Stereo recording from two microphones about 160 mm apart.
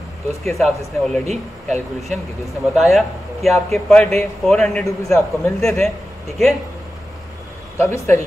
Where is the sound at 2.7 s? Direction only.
Centre (ahead or behind).